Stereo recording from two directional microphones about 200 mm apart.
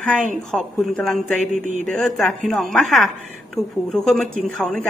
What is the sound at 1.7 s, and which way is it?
Speech, 40° right (ahead or behind).